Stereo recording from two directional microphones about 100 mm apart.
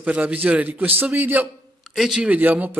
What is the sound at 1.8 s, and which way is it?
Speech, 5° right (ahead or behind).